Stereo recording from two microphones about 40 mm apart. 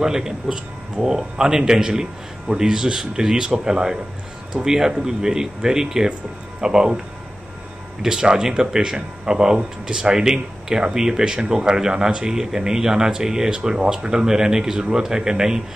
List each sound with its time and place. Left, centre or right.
0.0 s speech: centre
8.0 s speech: centre